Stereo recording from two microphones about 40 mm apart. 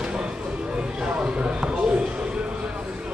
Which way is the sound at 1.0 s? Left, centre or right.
Right.